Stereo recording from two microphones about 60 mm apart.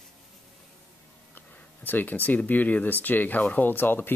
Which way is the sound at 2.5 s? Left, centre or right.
Left.